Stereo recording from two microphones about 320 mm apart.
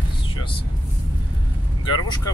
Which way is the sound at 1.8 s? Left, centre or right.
Centre.